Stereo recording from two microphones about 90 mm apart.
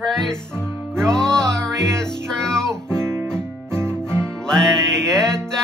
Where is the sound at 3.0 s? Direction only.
30° right (ahead or behind).